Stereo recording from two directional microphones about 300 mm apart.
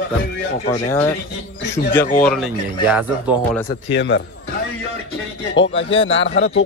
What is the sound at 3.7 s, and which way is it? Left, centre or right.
Speech, left.